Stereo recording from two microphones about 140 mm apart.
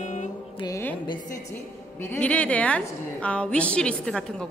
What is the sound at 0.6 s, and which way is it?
Speech, 35° left (ahead or behind).